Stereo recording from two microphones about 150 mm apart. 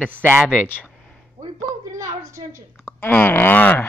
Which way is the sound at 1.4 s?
25° right (ahead or behind).